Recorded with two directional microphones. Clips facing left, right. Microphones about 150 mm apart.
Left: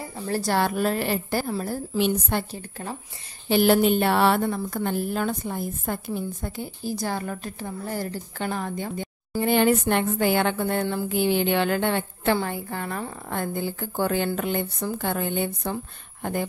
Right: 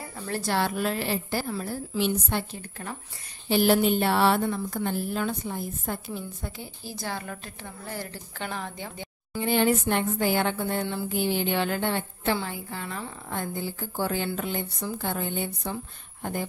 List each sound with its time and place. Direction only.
0.3 s a woman's voice: 40° left (ahead or behind)
3.4 s a woman's voice: 60° left (ahead or behind)
11.1 s a woman's voice: 70° left (ahead or behind)